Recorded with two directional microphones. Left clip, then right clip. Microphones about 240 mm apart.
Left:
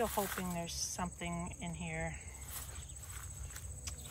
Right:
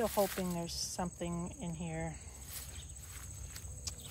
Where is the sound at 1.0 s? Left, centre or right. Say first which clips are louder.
Right 1 dB; centre.